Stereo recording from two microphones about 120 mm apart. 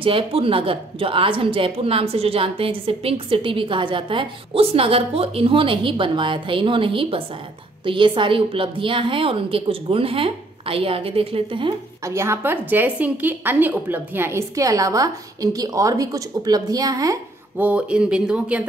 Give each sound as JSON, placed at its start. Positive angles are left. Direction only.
{"t": 0.0, "sound": "speech", "side_deg": -50}
{"t": 12.0, "sound": "a woman's voice", "side_deg": -25}
{"t": 17.6, "sound": "speech", "side_deg": -10}